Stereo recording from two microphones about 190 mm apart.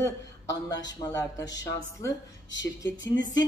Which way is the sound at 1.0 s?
15° left (ahead or behind).